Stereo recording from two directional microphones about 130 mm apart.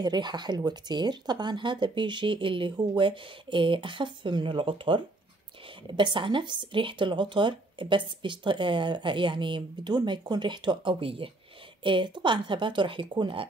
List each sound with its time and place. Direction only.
0.0 s speech: 35° right (ahead or behind)